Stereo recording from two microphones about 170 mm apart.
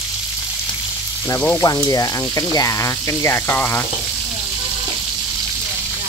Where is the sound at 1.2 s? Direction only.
15° left (ahead or behind).